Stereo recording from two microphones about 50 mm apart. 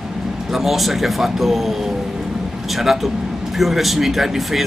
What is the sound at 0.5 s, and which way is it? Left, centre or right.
Speech, centre.